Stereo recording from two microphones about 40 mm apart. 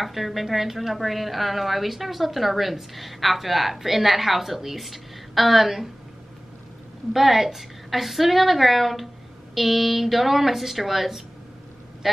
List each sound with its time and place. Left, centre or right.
0.0 s a woman's voice: centre
7.1 s a woman's voice: centre